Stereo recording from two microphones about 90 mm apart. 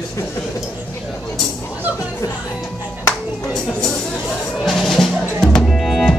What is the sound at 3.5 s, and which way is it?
Speech, 5° left (ahead or behind).